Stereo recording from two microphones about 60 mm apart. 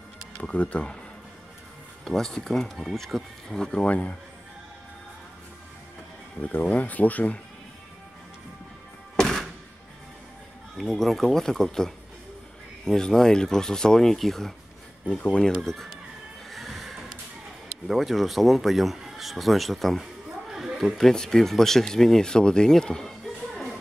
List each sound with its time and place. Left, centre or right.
0.4 s speech: left
2.0 s speech: centre
3.8 s speech: left
6.4 s speech: left
9.1 s music: centre
10.8 s speech: centre
15.0 s speech: centre
16.4 s a sound: centre
17.8 s speech: centre